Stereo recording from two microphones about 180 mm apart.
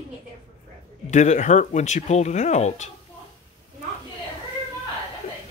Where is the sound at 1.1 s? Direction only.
40° left (ahead or behind).